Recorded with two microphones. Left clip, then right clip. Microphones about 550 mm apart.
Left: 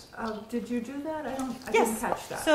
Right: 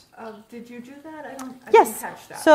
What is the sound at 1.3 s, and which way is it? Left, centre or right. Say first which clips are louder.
Speech: right 11 dB; right.